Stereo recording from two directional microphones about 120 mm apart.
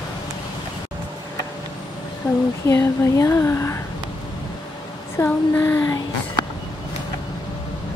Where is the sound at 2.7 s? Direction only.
25° left (ahead or behind).